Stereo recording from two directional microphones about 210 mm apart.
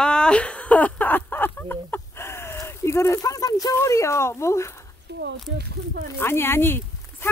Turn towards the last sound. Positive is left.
turn(degrees=10)  # may be behind; listen again after turning